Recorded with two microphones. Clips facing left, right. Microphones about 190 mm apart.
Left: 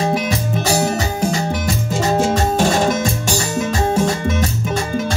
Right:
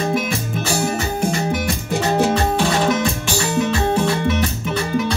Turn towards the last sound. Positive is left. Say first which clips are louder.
# left 1 dB
turn(degrees=45)  # may be behind; listen again after turning